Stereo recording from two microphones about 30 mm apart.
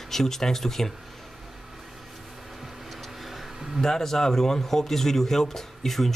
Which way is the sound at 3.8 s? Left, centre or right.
Centre.